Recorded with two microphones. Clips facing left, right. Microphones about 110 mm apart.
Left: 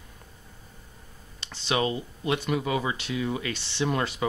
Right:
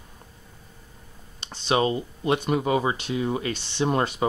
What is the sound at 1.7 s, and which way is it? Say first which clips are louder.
Speech: right 4 dB; 35° right (ahead or behind).